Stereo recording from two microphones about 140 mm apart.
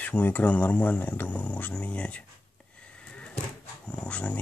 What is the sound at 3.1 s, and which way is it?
Cupboard open or close, 10° left (ahead or behind).